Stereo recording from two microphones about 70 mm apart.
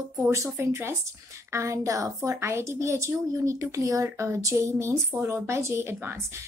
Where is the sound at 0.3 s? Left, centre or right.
Right.